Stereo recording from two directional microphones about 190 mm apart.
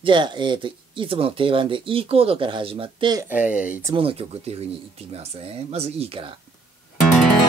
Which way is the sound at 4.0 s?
30° right (ahead or behind).